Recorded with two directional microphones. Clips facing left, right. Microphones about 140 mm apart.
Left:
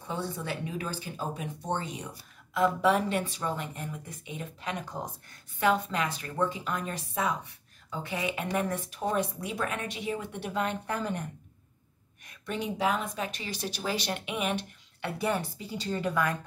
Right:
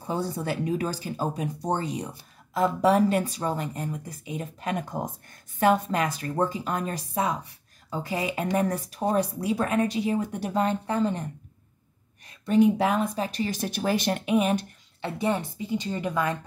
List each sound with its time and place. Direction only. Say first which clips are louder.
0.0 s speech: right 5 dB; 40° right (ahead or behind)
12.5 s speech: right 9 dB; 45° right (ahead or behind)
13.1 s speech: right 7 dB; 35° right (ahead or behind)
15.0 s speech: right 3 dB; 25° right (ahead or behind)